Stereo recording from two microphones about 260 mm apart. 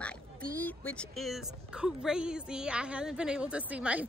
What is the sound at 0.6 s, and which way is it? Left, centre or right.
Speech, centre.